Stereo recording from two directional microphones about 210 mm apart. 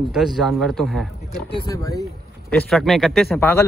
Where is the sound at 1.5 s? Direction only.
15° left (ahead or behind).